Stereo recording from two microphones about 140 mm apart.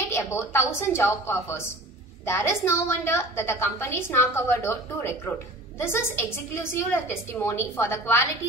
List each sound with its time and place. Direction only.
0.1 s a woman's voice: 20° left (ahead or behind)